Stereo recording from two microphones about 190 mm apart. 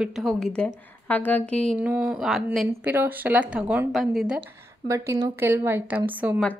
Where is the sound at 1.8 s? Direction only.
5° right (ahead or behind).